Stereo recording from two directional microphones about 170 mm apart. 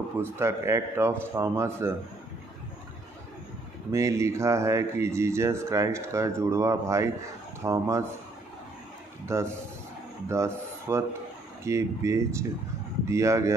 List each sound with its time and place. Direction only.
0.2 s speech: 15° right (ahead or behind)
3.9 s speech: 15° right (ahead or behind)
9.2 s a man's voice: 15° right (ahead or behind)